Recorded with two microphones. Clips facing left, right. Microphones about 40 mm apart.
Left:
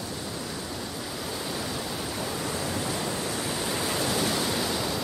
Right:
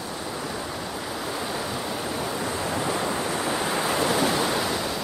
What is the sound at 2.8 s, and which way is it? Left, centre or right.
Waves, right.